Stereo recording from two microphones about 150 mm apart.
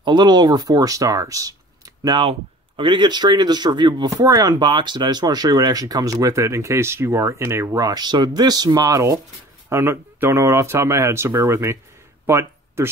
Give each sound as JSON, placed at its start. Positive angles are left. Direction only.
{"t": 0.0, "sound": "speech", "side_deg": -30}
{"t": 2.0, "sound": "speech", "side_deg": -35}
{"t": 12.3, "sound": "a sound", "side_deg": -15}